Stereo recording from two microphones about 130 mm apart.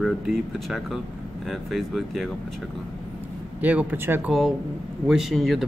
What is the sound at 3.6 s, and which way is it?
Speech, 10° right (ahead or behind).